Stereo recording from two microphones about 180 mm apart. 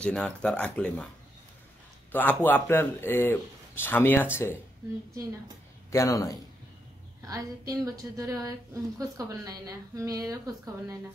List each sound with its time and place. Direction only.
0.0 s a man's voice: 5° left (ahead or behind)
2.1 s a man's voice: 10° left (ahead or behind)
5.9 s a man's voice: 20° left (ahead or behind)
7.2 s a woman's voice: 20° right (ahead or behind)